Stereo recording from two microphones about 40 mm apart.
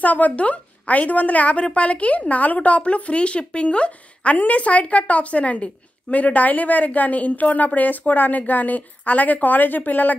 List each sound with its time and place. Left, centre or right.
0.0 s a woman's voice: left